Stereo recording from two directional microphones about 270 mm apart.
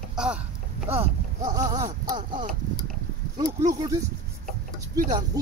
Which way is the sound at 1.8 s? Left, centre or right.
Right.